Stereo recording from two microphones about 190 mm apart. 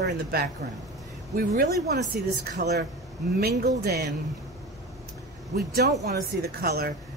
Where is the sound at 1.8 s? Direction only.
55° right (ahead or behind).